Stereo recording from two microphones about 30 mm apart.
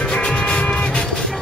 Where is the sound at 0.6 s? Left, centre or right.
Left.